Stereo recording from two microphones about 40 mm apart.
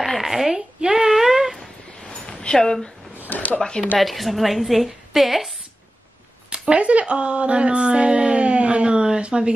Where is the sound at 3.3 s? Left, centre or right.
Left.